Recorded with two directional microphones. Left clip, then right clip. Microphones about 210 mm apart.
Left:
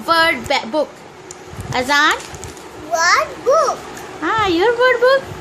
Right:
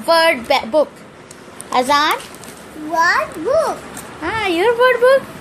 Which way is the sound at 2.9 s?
20° left (ahead or behind).